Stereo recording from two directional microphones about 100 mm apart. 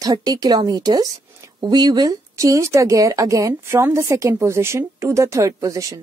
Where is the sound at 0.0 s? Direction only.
40° right (ahead or behind).